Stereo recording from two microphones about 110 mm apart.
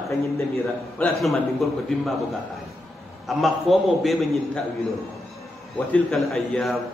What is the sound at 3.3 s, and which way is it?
A man's voice, centre (ahead or behind).